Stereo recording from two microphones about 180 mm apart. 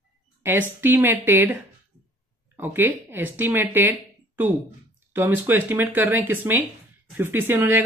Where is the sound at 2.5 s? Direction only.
10° right (ahead or behind).